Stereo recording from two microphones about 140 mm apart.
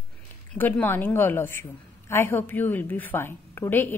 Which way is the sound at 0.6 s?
15° left (ahead or behind).